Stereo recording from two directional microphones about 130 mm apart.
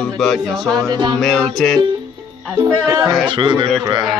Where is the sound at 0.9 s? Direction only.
30° right (ahead or behind).